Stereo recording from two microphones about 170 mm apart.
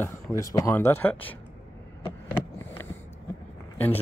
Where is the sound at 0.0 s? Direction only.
20° left (ahead or behind).